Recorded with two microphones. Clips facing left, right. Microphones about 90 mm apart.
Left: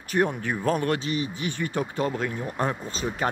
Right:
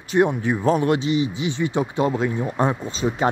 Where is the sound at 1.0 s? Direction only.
45° left (ahead or behind).